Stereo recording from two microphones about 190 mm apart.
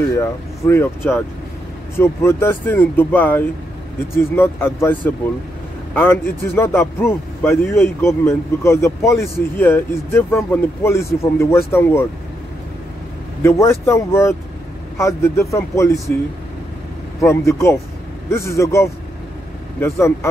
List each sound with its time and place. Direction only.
0.1 s a man's voice: 15° left (ahead or behind)
13.4 s a man's voice: 15° left (ahead or behind)
17.2 s a man's voice: 15° left (ahead or behind)